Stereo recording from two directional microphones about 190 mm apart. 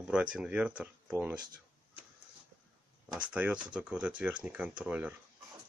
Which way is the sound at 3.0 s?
5° right (ahead or behind).